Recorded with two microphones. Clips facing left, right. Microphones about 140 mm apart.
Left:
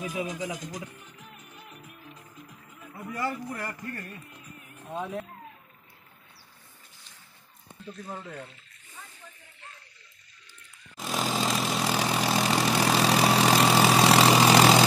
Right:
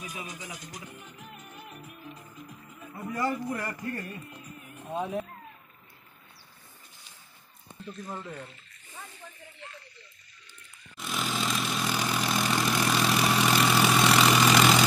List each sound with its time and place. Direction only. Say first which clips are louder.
0.1 s speech: left 9 dB; 90° left
3.3 s a man's voice: right 3 dB; 25° right (ahead or behind)
4.8 s speech: right 2 dB; 10° right (ahead or behind)
7.8 s speech: even; 5° left (ahead or behind)
11.0 s vehicle: left 3 dB; 40° left (ahead or behind)